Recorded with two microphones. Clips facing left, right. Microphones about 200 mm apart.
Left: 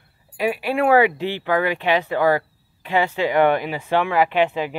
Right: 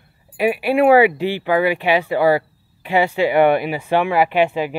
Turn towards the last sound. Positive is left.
turn(degrees=-10)  # may be behind; listen again after turning